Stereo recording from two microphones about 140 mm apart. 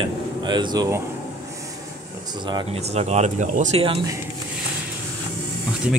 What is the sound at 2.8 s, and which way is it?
Speech, 50° right (ahead or behind).